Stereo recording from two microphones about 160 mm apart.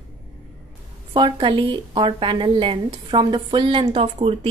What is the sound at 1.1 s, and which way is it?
A woman's voice, 30° right (ahead or behind).